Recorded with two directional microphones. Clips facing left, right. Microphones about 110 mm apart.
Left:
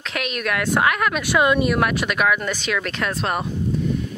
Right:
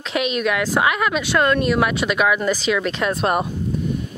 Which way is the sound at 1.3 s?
10° left (ahead or behind).